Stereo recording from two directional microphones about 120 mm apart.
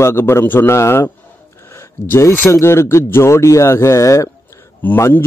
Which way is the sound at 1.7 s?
20° left (ahead or behind).